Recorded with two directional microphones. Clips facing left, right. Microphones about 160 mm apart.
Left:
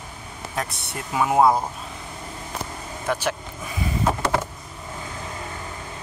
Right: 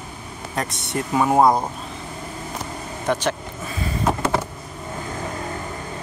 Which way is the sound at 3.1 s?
10° left (ahead or behind).